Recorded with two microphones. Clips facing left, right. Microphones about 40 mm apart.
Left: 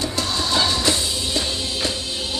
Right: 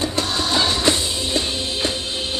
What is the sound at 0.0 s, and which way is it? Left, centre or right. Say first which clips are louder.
Music: right 2 dB; right.